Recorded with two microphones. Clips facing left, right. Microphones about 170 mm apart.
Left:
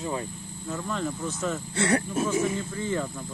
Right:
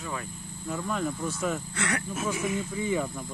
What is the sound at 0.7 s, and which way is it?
Speech, 5° right (ahead or behind).